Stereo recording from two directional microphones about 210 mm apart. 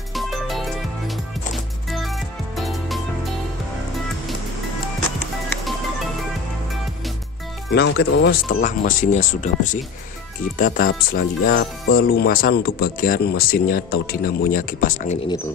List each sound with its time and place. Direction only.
0.1 s music: centre (ahead or behind)
7.7 s speech: 55° left (ahead or behind); by 15.1 s 40° left (ahead or behind)